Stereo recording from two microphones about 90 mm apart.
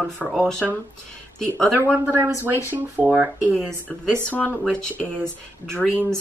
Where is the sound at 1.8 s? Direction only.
25° right (ahead or behind).